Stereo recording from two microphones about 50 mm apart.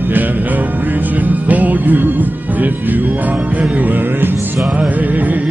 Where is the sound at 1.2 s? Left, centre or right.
Right.